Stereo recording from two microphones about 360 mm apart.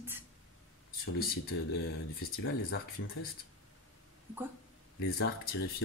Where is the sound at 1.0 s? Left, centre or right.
Left.